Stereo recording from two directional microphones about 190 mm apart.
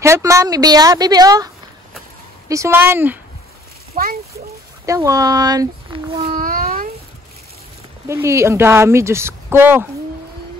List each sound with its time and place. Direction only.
0.0 s speech: 15° right (ahead or behind)
3.9 s a child's voice: 50° right (ahead or behind)
4.8 s speech: 15° right (ahead or behind)
6.3 s babbling: 45° right (ahead or behind)
8.1 s speech: 15° right (ahead or behind)